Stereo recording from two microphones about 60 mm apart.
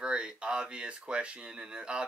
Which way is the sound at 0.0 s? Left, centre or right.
Centre.